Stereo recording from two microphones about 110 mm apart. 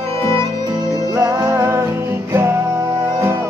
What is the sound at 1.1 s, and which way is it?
Music, 30° right (ahead or behind).